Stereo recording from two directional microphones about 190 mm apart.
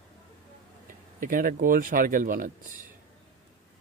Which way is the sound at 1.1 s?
45° right (ahead or behind).